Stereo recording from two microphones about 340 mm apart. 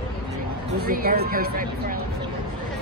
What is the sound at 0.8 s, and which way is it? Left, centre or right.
Speech, right.